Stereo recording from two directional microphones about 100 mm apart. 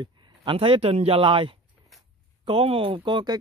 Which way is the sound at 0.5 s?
70° right (ahead or behind).